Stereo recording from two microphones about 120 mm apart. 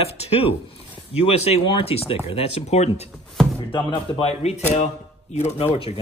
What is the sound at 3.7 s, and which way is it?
Speech, 40° left (ahead or behind).